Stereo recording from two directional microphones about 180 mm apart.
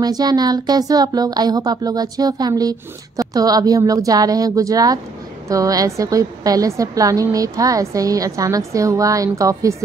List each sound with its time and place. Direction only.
0.0 s a woman's voice: 20° right (ahead or behind)